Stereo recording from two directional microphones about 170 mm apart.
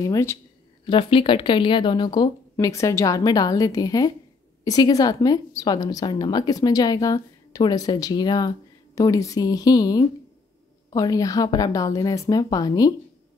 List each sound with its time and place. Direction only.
0.0 s speech: 15° left (ahead or behind)
0.8 s a woman's voice: 30° left (ahead or behind)